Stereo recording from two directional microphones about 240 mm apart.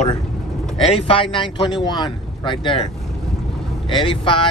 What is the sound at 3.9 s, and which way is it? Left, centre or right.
Speech, left.